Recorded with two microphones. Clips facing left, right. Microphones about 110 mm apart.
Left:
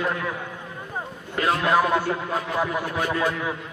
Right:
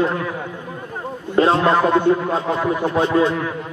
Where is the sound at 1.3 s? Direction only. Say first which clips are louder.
Right 6 dB; 30° right (ahead or behind).